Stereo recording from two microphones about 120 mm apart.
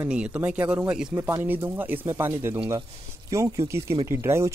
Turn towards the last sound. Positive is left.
turn(degrees=-20)  # may be behind; listen again after turning